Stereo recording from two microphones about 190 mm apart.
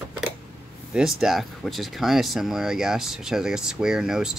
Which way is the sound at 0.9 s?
Centre (ahead or behind).